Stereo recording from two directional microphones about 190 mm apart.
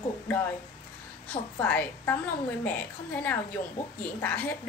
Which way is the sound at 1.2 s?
10° left (ahead or behind).